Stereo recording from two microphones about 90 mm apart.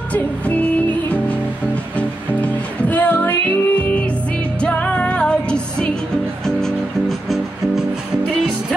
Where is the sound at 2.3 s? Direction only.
15° left (ahead or behind).